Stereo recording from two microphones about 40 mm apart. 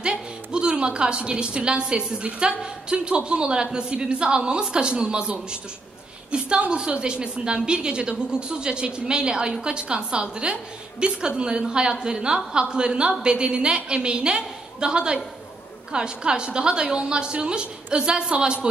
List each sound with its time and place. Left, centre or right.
0.0 s a woman's voice: right